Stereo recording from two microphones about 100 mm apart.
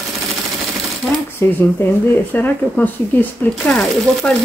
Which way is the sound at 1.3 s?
20° left (ahead or behind).